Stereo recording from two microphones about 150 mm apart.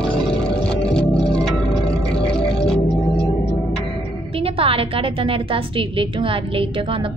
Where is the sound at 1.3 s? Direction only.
5° left (ahead or behind).